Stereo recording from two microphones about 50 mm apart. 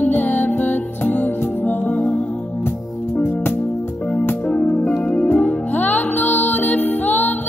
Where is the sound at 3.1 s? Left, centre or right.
Left.